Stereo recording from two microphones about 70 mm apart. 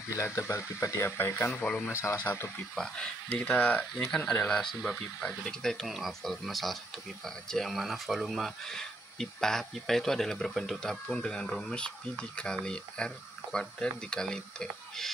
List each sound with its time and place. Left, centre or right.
0.1 s speech: left
2.7 s speech: centre
3.3 s speech: left
3.9 s speech: centre